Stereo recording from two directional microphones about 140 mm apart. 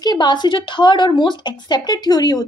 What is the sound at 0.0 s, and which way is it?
Speech, 30° left (ahead or behind).